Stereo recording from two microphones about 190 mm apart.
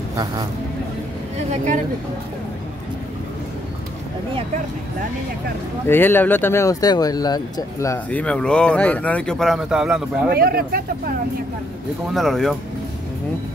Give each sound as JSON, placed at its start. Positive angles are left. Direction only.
{"t": 5.9, "sound": "speech", "side_deg": 10}
{"t": 10.3, "sound": "speech", "side_deg": -50}
{"t": 12.1, "sound": "speech", "side_deg": 0}